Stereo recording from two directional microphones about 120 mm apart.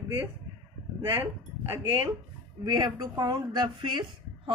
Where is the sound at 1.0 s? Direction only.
20° right (ahead or behind).